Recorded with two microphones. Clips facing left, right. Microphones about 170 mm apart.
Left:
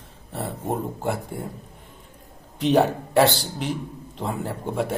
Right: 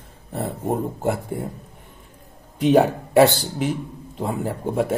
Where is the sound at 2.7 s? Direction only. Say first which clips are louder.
Right 3 dB; centre (ahead or behind).